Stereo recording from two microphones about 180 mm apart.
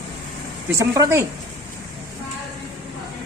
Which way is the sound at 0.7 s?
15° right (ahead or behind).